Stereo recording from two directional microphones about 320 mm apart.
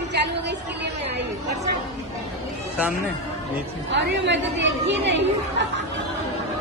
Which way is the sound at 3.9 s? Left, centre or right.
Right.